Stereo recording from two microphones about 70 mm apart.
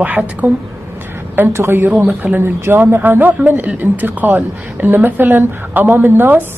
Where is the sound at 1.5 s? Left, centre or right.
Right.